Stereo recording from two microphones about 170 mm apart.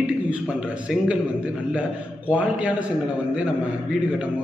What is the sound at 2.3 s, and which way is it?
Speech, 5° right (ahead or behind).